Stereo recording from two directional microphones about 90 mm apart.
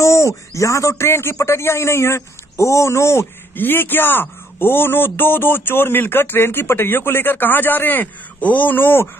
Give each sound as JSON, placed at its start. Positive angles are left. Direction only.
{"t": 0.0, "sound": "a man's voice", "side_deg": 35}